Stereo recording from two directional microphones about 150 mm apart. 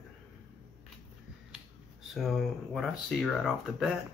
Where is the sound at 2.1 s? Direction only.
Centre (ahead or behind).